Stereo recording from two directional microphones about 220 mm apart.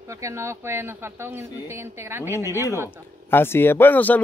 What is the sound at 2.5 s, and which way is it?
Speech, 15° left (ahead or behind).